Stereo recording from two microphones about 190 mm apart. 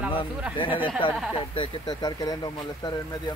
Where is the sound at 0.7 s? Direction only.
10° right (ahead or behind).